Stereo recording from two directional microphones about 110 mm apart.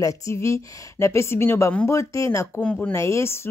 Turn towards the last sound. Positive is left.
turn(degrees=25)  # may be behind; listen again after turning